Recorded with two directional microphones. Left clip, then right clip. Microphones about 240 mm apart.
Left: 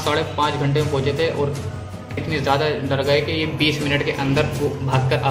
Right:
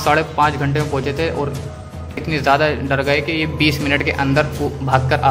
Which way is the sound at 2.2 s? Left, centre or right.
Right.